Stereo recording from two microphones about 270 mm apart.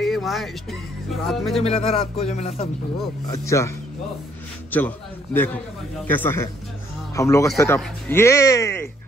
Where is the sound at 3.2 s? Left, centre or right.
Centre.